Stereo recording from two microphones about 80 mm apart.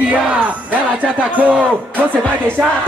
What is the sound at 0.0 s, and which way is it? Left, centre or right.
Music, centre.